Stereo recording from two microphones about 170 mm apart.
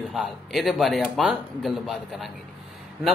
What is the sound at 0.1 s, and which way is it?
A man's voice, centre (ahead or behind).